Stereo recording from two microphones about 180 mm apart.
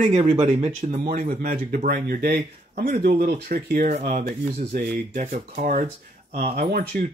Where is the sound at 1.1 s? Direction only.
50° right (ahead or behind).